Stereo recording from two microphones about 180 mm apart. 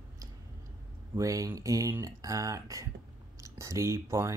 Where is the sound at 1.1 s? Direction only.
20° right (ahead or behind).